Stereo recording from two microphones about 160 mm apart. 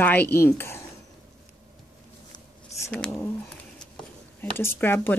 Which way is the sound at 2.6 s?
20° left (ahead or behind).